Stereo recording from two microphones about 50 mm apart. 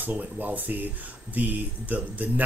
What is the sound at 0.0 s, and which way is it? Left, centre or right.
Speech, right.